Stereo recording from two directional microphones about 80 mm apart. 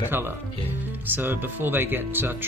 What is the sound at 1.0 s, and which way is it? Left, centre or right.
Speech, right.